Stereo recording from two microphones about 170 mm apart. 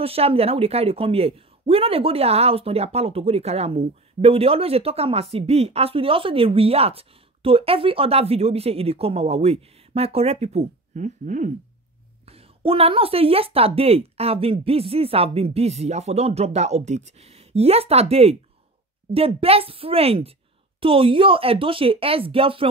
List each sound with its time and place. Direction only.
0.0 s speech: 35° right (ahead or behind)
12.3 s speech: 35° right (ahead or behind)